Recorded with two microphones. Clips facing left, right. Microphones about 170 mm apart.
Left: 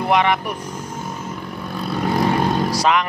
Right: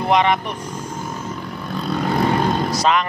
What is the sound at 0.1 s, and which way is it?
Speech, 10° left (ahead or behind).